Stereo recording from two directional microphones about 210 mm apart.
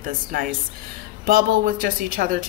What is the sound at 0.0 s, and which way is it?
A woman's voice, 40° right (ahead or behind).